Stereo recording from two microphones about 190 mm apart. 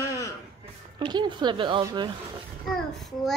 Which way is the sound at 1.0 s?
25° right (ahead or behind).